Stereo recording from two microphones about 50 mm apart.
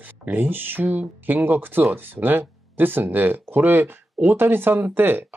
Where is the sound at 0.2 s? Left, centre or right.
Right.